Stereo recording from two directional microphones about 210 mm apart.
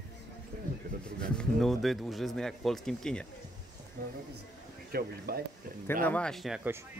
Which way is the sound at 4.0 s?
40° right (ahead or behind).